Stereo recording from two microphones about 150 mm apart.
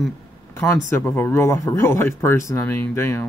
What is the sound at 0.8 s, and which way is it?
Speech, 15° left (ahead or behind).